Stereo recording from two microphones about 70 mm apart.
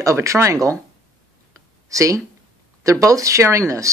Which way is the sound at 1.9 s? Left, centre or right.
Right.